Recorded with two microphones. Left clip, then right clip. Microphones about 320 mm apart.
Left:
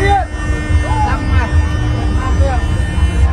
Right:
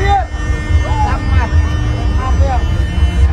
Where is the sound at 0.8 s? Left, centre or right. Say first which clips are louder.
Even; right.